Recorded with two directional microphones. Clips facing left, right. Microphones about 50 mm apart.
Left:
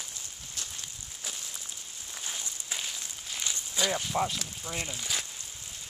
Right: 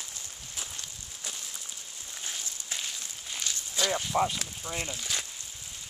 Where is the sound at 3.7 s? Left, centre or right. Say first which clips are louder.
Right 2 dB; centre.